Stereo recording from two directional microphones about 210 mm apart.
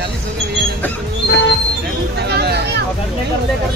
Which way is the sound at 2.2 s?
50° right (ahead or behind).